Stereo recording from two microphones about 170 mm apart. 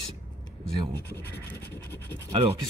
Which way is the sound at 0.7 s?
25° right (ahead or behind).